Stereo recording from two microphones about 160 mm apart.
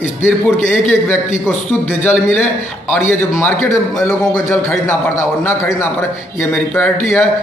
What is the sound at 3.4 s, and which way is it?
A man's voice, 15° left (ahead or behind).